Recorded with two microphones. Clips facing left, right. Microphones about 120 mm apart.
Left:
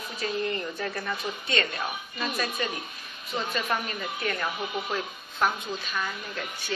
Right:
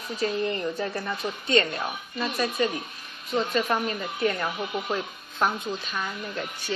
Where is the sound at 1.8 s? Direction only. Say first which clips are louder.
Right 2 dB; 5° left (ahead or behind).